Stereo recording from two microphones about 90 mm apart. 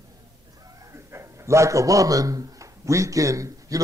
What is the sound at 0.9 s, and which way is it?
A man's voice, 30° right (ahead or behind).